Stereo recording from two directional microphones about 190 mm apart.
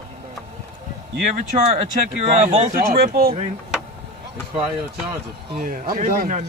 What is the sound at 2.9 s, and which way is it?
Speech, 55° right (ahead or behind).